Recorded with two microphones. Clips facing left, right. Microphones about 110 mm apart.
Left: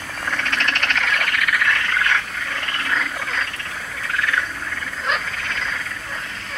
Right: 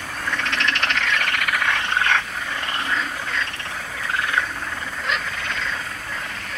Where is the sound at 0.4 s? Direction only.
45° left (ahead or behind).